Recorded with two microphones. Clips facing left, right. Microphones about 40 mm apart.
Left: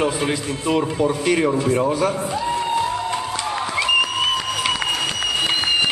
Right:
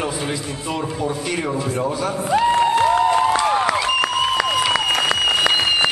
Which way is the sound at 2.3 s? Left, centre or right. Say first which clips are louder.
Right 6 dB; right.